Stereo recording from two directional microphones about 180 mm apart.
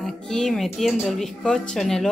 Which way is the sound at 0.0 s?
Centre (ahead or behind).